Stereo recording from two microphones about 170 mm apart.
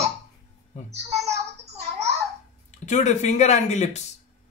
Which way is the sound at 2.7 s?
45° left (ahead or behind).